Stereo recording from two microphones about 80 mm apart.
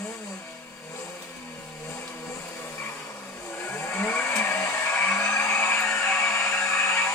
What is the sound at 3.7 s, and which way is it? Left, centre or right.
Vehicle, left.